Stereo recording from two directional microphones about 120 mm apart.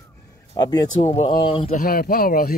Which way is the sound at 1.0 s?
60° left (ahead or behind).